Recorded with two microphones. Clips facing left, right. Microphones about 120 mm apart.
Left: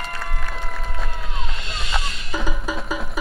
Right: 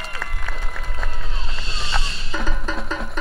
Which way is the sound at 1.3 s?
30° right (ahead or behind).